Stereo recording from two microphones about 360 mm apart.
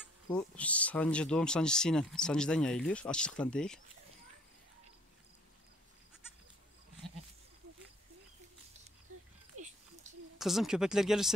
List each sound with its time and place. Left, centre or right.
0.3 s speech: centre
9.5 s a sound: right
10.4 s speech: centre